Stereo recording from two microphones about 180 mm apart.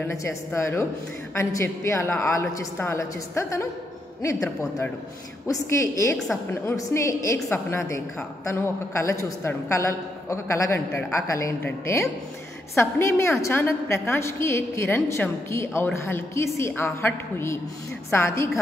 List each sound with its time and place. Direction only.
0.0 s a woman's voice: 15° left (ahead or behind)